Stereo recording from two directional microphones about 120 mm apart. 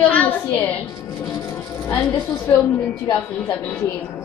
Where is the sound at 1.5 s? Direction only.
15° left (ahead or behind).